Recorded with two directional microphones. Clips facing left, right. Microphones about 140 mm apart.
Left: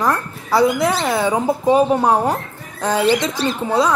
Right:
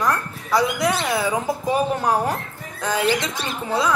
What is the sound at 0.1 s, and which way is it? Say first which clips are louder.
A woman's voice: left 3 dB; 25° left (ahead or behind).